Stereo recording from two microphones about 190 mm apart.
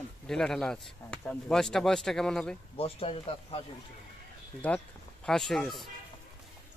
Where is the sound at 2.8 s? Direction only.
30° left (ahead or behind).